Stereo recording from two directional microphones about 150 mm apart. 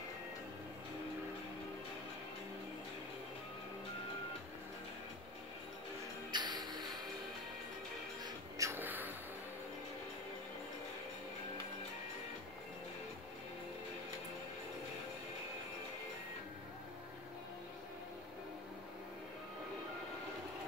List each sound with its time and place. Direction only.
6.3 s music: 30° right (ahead or behind)
8.2 s music: 20° right (ahead or behind)